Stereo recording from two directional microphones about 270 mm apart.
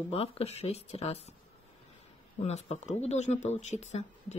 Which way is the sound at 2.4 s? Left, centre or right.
Left.